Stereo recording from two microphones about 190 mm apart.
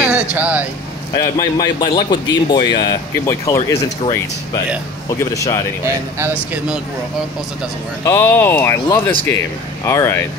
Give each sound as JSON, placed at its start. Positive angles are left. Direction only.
{"t": 0.0, "sound": "vehicle", "side_deg": -5}
{"t": 1.1, "sound": "speech", "side_deg": 20}
{"t": 5.3, "sound": "speech", "side_deg": 15}
{"t": 6.1, "sound": "speech", "side_deg": -10}
{"t": 8.0, "sound": "speech", "side_deg": 15}